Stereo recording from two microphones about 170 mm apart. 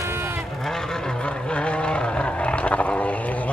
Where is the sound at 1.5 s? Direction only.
5° left (ahead or behind).